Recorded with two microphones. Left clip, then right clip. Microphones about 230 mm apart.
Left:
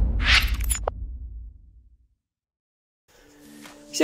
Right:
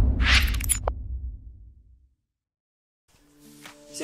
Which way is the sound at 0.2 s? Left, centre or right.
Centre.